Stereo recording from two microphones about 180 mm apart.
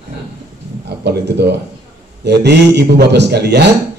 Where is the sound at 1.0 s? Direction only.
65° right (ahead or behind).